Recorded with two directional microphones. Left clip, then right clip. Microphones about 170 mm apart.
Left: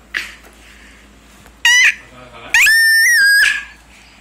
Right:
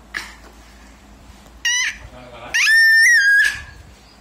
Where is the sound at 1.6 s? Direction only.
25° right (ahead or behind).